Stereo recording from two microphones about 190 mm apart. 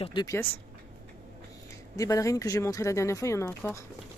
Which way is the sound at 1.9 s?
15° left (ahead or behind).